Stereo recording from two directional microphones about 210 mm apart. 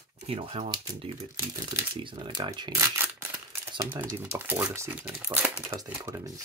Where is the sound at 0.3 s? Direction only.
25° right (ahead or behind).